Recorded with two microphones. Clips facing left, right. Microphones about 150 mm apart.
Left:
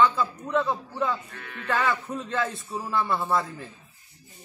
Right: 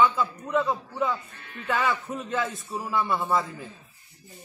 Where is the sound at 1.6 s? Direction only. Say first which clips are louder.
Even; centre (ahead or behind).